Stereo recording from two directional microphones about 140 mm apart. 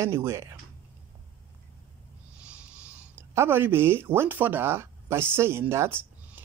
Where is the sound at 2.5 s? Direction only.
10° right (ahead or behind).